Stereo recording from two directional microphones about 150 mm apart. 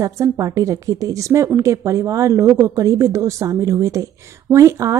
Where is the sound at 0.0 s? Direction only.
20° right (ahead or behind).